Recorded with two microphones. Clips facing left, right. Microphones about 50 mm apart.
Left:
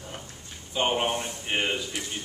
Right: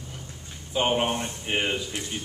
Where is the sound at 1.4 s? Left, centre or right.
Centre.